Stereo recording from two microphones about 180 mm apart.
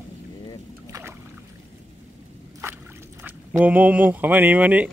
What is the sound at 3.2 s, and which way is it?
Speech, 10° right (ahead or behind).